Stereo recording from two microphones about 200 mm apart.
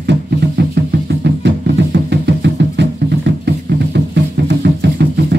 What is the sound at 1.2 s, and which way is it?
Music, 60° right (ahead or behind).